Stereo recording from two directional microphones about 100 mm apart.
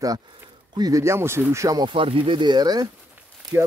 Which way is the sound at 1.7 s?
55° right (ahead or behind).